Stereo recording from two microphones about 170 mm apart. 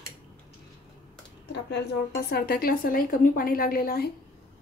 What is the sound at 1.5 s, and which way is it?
A woman's voice, 80° left.